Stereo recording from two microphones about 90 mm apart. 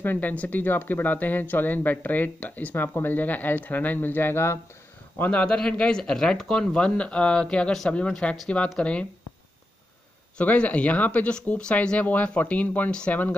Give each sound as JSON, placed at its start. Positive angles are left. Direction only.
{"t": 0.0, "sound": "speech", "side_deg": 20}
{"t": 5.2, "sound": "speech", "side_deg": 15}
{"t": 10.3, "sound": "speech", "side_deg": 15}